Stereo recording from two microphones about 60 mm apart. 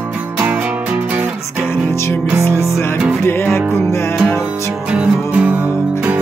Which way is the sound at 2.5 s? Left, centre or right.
Left.